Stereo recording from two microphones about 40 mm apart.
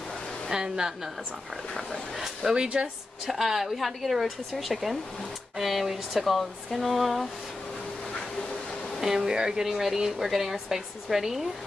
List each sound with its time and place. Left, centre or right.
0.5 s speech: centre
2.1 s speech: centre
2.5 s speech: right
3.3 s speech: centre
9.0 s speech: centre